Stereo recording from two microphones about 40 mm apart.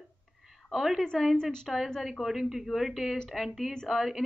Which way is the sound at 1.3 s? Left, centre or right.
Centre.